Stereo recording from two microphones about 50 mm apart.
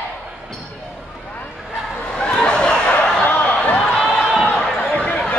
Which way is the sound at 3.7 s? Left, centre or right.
Centre.